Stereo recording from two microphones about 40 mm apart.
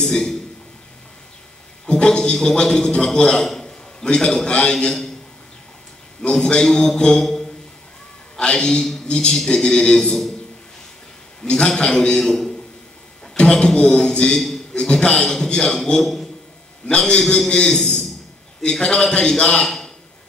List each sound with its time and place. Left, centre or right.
0.0 s a man's voice: centre
1.9 s speech: left
3.4 s a sound: centre
4.0 s speech: left
6.3 s a man's voice: centre
7.2 s a sound: centre
8.4 s speech: left
11.4 s a man's voice: centre
15.2 s a man's voice: centre
17.5 s a man's voice: centre